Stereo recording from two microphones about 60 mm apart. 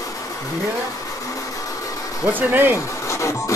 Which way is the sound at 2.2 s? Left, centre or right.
Right.